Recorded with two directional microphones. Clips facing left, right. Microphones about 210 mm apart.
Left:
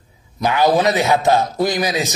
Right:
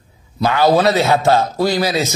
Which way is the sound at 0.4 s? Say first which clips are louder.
Right 2 dB; 15° left (ahead or behind).